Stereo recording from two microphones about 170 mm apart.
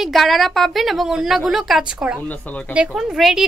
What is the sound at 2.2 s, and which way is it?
Speech, 10° left (ahead or behind).